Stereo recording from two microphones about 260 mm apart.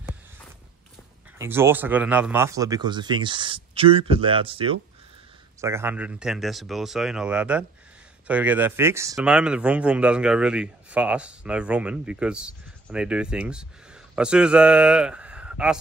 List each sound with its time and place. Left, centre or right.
1.4 s speech: centre
5.6 s a man's voice: centre